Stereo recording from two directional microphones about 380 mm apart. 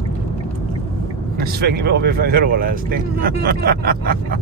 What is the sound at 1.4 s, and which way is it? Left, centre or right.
Speech, right.